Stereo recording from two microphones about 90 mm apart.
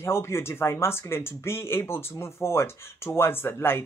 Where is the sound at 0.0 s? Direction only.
30° left (ahead or behind).